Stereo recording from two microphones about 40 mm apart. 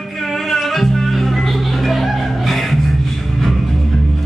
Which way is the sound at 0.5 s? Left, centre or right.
Centre.